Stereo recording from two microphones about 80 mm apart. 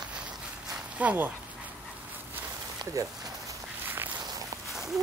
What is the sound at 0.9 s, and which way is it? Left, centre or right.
Speech, right.